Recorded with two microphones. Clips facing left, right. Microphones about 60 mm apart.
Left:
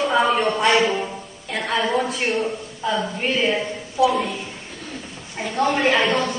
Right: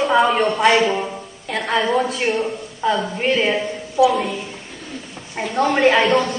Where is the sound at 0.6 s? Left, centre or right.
Centre.